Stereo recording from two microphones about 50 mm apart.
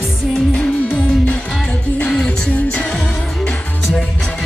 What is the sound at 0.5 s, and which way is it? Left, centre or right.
Music, left.